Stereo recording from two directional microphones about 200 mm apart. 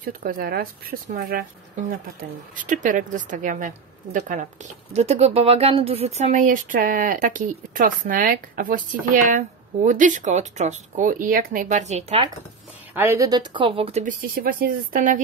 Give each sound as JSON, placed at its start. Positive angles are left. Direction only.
{"t": 0.0, "sound": "speech", "side_deg": -50}
{"t": 2.5, "sound": "a woman's voice", "side_deg": -40}
{"t": 12.9, "sound": "a woman's voice", "side_deg": -10}
{"t": 14.0, "sound": "speech", "side_deg": -45}